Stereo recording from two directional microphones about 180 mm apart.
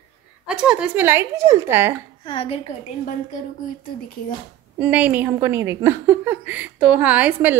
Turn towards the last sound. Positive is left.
turn(degrees=-10)  # may be behind; listen again after turning